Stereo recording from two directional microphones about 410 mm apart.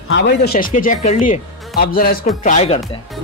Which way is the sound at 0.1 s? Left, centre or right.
Left.